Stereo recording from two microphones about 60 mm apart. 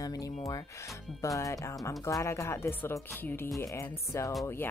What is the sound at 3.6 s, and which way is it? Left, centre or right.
Speech, left.